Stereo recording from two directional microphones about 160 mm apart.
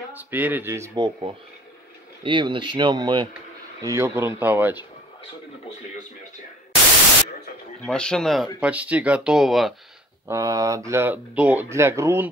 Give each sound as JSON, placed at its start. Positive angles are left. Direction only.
{"t": 0.1, "sound": "speech", "side_deg": -10}
{"t": 7.8, "sound": "speech", "side_deg": 5}
{"t": 8.5, "sound": "speech", "side_deg": -10}
{"t": 10.2, "sound": "speech", "side_deg": -20}